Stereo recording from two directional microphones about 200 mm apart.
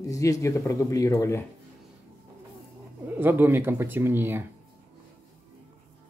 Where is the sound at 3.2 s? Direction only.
10° right (ahead or behind).